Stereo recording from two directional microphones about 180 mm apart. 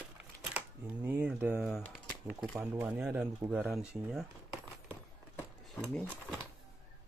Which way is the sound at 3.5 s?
5° right (ahead or behind).